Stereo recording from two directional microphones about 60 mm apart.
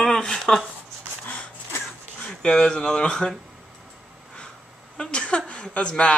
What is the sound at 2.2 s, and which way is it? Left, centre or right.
Speech, centre.